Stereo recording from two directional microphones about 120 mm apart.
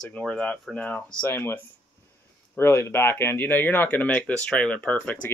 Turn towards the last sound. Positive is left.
turn(degrees=10)  # may be behind; listen again after turning